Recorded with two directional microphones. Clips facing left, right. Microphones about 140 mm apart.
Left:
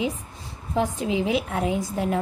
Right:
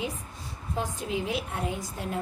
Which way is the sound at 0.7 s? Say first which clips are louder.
Left 7 dB; 90° left.